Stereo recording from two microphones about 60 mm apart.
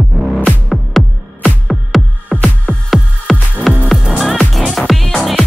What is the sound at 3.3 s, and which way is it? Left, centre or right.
Music, centre.